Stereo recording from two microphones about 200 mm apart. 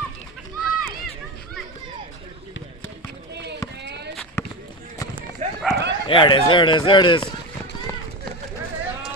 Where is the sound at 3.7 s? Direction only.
55° right (ahead or behind).